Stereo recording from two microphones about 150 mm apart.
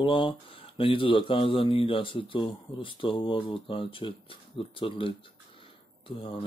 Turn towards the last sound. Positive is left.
turn(degrees=35)  # may be behind; listen again after turning